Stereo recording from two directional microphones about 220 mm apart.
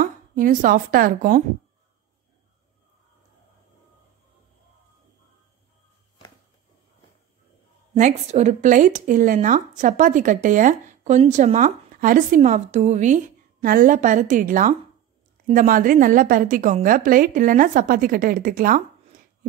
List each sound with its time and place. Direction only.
0.0 s speech: 35° right (ahead or behind)
7.9 s speech: 30° right (ahead or behind)